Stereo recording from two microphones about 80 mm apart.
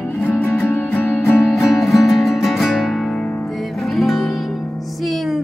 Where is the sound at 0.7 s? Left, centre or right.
Left.